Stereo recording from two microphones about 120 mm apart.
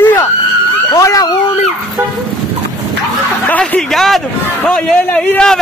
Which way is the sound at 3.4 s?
10° left (ahead or behind).